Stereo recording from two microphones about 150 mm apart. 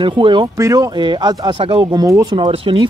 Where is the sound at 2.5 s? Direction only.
35° right (ahead or behind).